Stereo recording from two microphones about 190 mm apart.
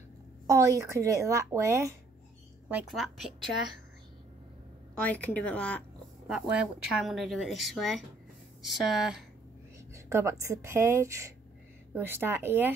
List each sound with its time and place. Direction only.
0.5 s speech: 15° right (ahead or behind)
2.7 s speech: centre (ahead or behind)
5.0 s speech: 10° left (ahead or behind)
9.9 s speech: 15° right (ahead or behind)